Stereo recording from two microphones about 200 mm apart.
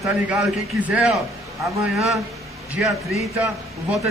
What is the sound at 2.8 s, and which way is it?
Speech, 5° right (ahead or behind).